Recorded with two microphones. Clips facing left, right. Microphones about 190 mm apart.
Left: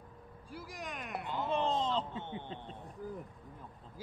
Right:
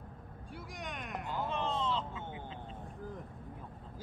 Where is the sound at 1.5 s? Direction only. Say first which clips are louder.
Left 4 dB; 35° left (ahead or behind).